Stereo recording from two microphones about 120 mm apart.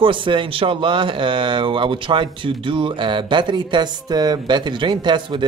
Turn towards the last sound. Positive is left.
turn(degrees=-40)  # may be behind; listen again after turning